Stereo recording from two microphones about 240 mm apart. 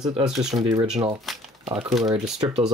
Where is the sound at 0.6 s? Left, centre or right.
Centre.